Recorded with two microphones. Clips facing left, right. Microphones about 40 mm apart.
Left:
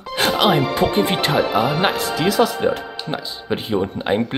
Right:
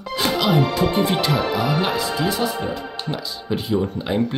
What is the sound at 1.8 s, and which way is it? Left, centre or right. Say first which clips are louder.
Speech: left 2 dB; left.